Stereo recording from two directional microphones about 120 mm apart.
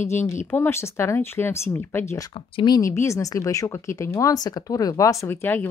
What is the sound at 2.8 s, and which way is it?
Speech, 25° left (ahead or behind).